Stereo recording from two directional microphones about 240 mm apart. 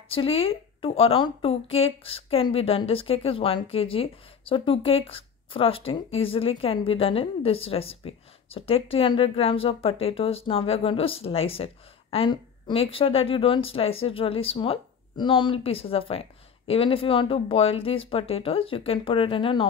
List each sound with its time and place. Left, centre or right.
0.1 s a woman's voice: left